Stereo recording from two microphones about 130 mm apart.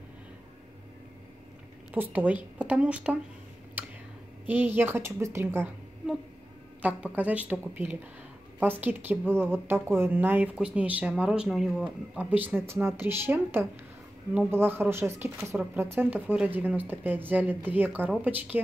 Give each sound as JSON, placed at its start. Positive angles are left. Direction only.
{"t": 1.9, "sound": "a woman's voice", "side_deg": -10}
{"t": 4.5, "sound": "a woman's voice", "side_deg": -15}
{"t": 6.8, "sound": "a woman's voice", "side_deg": -10}